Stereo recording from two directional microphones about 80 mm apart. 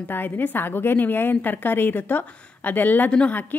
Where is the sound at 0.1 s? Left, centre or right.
Left.